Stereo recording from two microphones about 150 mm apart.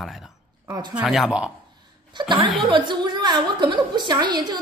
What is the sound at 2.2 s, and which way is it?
A woman's voice, 35° right (ahead or behind).